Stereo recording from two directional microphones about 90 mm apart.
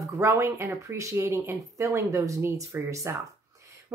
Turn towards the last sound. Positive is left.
turn(degrees=-35)  # may be behind; listen again after turning